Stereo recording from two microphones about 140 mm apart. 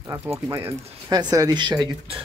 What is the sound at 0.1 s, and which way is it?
Speech, 20° right (ahead or behind).